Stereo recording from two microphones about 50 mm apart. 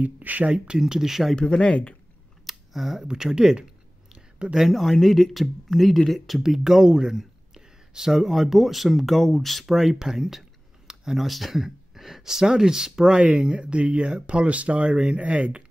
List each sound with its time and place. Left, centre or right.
0.0 s speech: right
0.7 s speech: centre
1.3 s speech: centre
2.4 s a sound: centre
3.1 s speech: centre
4.1 s a sound: centre
4.6 s speech: centre; by 15.6 s right